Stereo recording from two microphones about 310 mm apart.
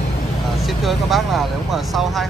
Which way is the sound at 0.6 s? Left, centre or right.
Centre.